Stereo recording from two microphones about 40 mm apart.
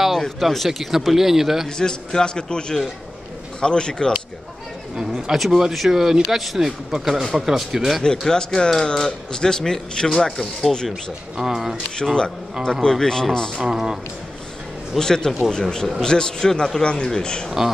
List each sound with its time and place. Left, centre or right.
0.4 s a man's voice: centre
1.8 s a man's voice: centre
4.9 s a man's voice: centre
8.2 s speech: centre
10.9 s speech: centre
12.0 s a man's voice: centre
12.9 s speech: centre
13.7 s speech: centre
15.0 s a man's voice: centre